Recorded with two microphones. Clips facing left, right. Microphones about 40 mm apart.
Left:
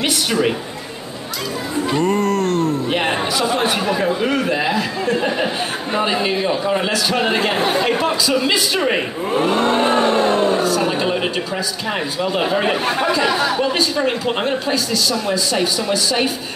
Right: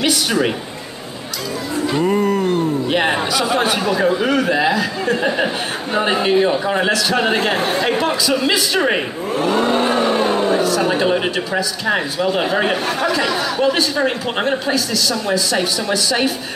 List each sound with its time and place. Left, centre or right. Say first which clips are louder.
2.0 s music: right 1 dB; centre
2.9 s a man's voice: right 2 dB; centre
7.3 s speech: even; centre
10.0 s speech: left 1 dB; centre
12.8 s speech: left 1 dB; left